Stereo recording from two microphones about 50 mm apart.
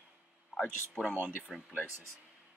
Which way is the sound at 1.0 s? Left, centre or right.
Left.